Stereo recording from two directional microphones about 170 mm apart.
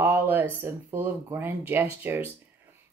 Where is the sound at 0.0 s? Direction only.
10° right (ahead or behind).